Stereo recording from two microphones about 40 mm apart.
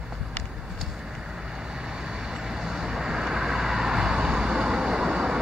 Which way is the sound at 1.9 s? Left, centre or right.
Centre.